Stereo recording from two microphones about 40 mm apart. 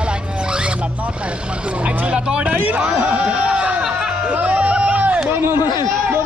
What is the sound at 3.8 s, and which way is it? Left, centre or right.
Music, centre.